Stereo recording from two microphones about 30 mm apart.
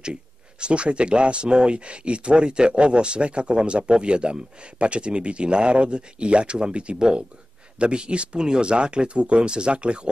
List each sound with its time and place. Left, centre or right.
0.0 s speech: right